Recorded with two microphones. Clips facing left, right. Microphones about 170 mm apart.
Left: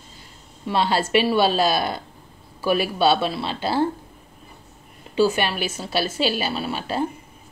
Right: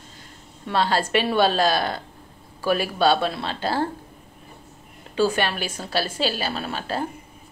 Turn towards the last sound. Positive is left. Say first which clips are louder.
# left 2 dB
turn(degrees=10)  # may be behind; listen again after turning